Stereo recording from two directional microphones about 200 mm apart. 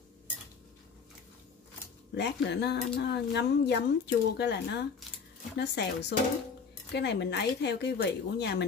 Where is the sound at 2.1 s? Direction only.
60° left (ahead or behind).